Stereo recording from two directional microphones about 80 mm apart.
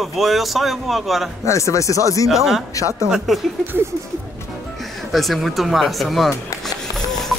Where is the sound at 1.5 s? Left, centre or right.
Left.